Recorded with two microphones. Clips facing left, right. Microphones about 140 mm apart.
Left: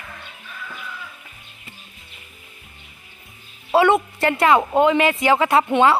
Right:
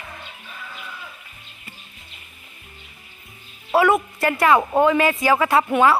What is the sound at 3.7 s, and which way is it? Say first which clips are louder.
Speech: left 1 dB; 25° left (ahead or behind).